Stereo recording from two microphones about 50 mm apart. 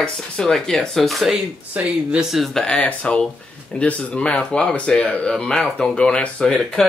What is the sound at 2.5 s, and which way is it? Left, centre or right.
Speech, centre.